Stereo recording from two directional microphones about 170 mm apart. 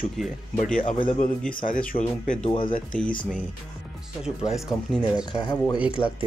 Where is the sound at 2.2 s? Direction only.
50° left (ahead or behind).